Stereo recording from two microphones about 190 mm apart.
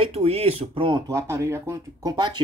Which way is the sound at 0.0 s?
30° right (ahead or behind).